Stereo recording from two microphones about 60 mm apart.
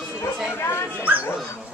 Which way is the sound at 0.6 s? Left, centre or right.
Left.